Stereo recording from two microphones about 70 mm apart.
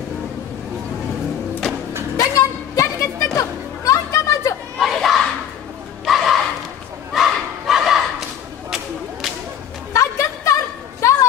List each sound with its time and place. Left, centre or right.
2.1 s music: left
4.7 s crowd: centre
6.0 s a sound: centre
7.1 s battle cry: centre
8.6 s whip: centre
9.9 s a sound: left